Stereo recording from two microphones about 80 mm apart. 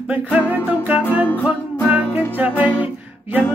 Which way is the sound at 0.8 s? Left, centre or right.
Centre.